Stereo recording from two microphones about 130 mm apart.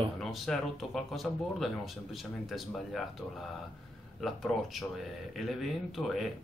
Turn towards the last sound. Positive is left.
turn(degrees=0)  # may be behind; listen again after turning